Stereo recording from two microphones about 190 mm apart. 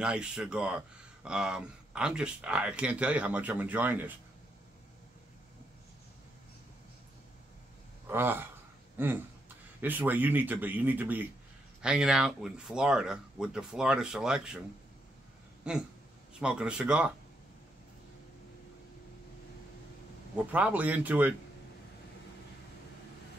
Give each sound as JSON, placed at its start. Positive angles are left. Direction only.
{"t": 0.0, "sound": "speech", "side_deg": -5}
{"t": 8.1, "sound": "speech", "side_deg": -10}
{"t": 15.7, "sound": "speech", "side_deg": -5}
{"t": 20.3, "sound": "speech", "side_deg": -5}